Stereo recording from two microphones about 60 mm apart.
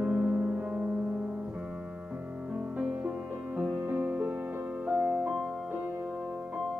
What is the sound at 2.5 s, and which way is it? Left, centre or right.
Music, centre.